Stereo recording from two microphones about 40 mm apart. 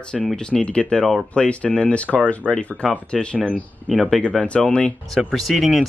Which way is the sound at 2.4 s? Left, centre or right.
Centre.